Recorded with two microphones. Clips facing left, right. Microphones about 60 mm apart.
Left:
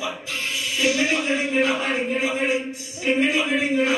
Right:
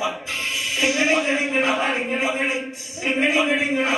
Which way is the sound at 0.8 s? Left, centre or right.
Right.